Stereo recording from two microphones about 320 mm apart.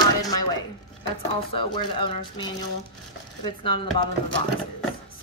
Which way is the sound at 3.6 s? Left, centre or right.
Centre.